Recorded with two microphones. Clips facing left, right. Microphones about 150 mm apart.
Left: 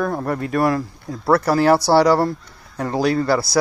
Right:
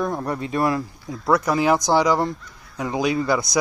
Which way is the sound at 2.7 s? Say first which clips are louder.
Left 3 dB; 10° right (ahead or behind).